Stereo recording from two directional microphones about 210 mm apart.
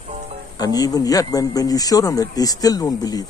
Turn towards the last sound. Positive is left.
turn(degrees=20)  # may be behind; listen again after turning